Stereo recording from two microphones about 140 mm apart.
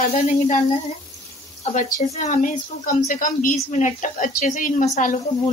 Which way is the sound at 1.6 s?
55° left (ahead or behind).